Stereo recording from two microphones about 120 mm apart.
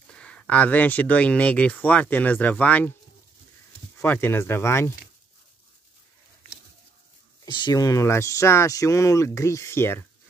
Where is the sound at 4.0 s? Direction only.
20° left (ahead or behind).